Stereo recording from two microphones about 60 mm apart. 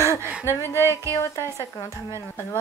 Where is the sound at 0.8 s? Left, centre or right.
Right.